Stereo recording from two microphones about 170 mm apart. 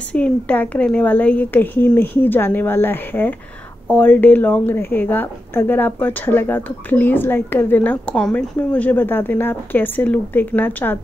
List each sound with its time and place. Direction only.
0.1 s a woman's voice: 10° left (ahead or behind)